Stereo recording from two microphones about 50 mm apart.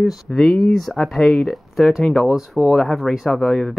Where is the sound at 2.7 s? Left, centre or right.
Centre.